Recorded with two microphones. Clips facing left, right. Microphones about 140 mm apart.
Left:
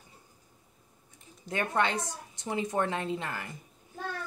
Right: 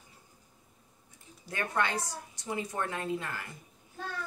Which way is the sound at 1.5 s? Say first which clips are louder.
Left 3 dB; 20° left (ahead or behind).